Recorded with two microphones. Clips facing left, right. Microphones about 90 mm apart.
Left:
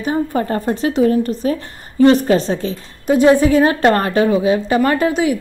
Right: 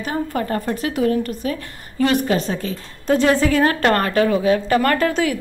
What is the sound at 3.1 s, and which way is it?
A woman's voice, 15° left (ahead or behind).